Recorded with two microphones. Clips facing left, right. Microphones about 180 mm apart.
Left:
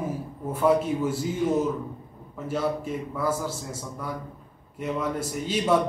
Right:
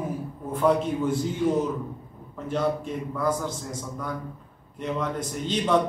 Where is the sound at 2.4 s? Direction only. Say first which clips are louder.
Right 1 dB; 5° left (ahead or behind).